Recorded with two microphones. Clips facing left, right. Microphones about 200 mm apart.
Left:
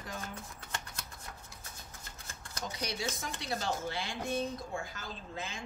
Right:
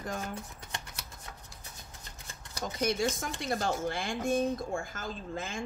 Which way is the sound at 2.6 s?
50° right (ahead or behind).